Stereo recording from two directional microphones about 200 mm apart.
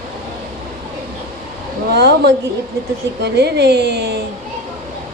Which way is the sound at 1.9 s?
55° right (ahead or behind).